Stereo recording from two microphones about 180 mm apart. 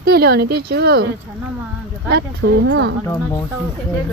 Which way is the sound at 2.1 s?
65° right (ahead or behind).